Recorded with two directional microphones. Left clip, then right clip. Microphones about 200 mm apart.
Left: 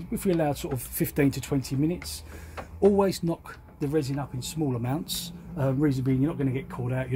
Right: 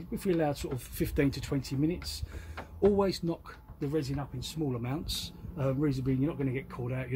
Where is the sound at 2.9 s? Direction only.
35° left (ahead or behind).